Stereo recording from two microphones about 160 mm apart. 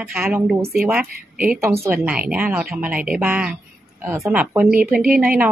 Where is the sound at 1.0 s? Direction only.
60° right (ahead or behind).